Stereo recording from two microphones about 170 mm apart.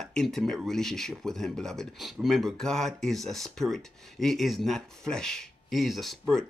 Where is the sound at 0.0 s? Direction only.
Centre (ahead or behind).